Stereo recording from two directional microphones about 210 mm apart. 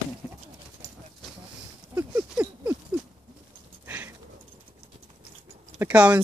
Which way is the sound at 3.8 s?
10° right (ahead or behind).